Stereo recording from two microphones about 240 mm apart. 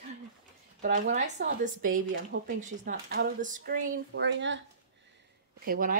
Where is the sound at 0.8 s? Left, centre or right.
Right.